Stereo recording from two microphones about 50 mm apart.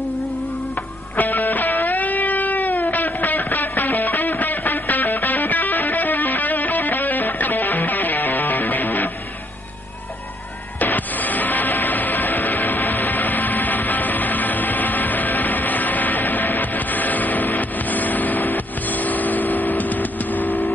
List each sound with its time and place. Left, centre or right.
1.1 s music: left
3.4 s music: left
10.8 s music: left